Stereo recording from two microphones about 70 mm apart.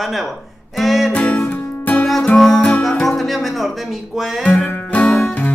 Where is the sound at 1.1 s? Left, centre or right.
Centre.